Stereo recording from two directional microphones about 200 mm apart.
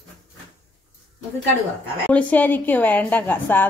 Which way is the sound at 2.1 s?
10° left (ahead or behind).